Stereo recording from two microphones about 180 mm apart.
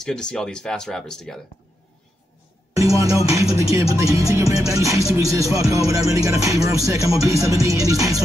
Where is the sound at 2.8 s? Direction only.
20° right (ahead or behind).